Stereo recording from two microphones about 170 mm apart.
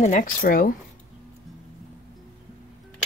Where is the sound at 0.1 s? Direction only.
55° left (ahead or behind).